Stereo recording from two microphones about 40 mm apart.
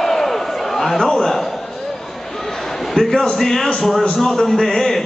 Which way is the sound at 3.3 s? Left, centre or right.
Centre.